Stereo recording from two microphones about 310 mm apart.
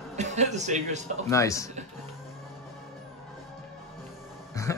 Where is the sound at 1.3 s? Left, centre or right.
Centre.